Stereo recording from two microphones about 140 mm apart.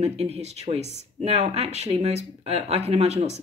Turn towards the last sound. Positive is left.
turn(degrees=-50)  # may be behind; listen again after turning